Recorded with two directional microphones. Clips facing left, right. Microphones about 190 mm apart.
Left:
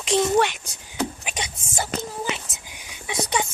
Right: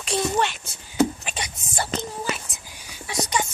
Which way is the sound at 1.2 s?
20° left (ahead or behind).